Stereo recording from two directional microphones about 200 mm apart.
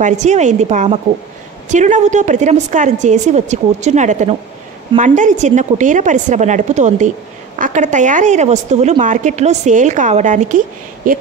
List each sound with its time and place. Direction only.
0.0 s a woman's voice: 35° right (ahead or behind)